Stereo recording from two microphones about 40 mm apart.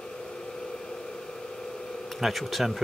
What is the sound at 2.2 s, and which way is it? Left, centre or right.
Speech, centre.